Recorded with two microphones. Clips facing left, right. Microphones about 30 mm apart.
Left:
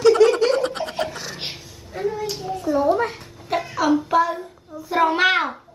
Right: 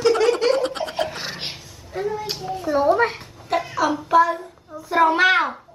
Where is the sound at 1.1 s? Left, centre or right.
Right.